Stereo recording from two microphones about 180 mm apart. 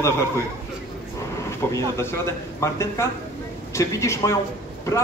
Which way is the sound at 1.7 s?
15° left (ahead or behind).